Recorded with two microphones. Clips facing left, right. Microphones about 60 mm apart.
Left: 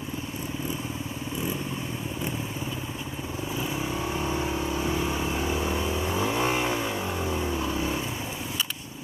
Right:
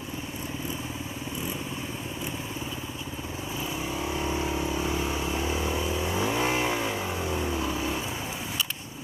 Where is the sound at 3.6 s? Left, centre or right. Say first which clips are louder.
Left 1 dB; centre.